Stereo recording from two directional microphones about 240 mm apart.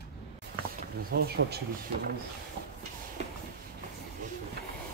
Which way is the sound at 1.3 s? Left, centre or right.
Right.